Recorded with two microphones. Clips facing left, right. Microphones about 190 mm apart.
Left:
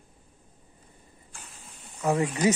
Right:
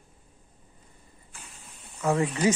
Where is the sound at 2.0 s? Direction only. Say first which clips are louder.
Even; 20° left (ahead or behind).